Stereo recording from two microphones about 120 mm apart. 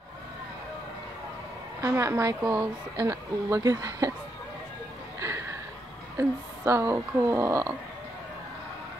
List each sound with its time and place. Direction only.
1.8 s a woman's voice: 25° right (ahead or behind)
6.1 s a woman's voice: 25° right (ahead or behind)